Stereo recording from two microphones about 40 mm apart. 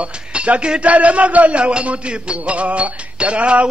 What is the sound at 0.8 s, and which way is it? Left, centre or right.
Music, right.